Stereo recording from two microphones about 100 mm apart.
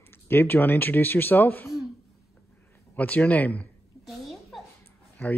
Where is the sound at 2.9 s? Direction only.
15° left (ahead or behind).